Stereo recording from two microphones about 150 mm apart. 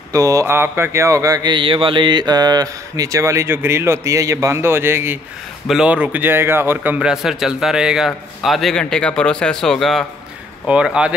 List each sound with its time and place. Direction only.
0.1 s a man's voice: 20° right (ahead or behind); by 11.1 s 5° right (ahead or behind)